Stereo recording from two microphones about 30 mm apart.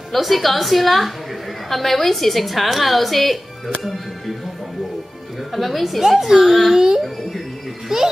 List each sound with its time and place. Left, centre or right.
0.1 s a woman's voice: centre
5.5 s a woman's voice: centre
5.9 s a child's voice: centre